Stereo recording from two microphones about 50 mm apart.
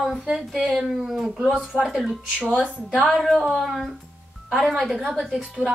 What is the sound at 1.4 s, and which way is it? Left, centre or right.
Music, right.